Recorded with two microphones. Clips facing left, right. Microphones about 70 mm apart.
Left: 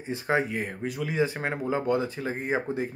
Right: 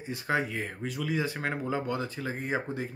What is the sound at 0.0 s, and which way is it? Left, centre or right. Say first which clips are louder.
Speech: left 3 dB; left.